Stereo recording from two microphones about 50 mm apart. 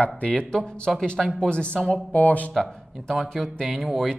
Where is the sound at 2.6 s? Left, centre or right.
Centre.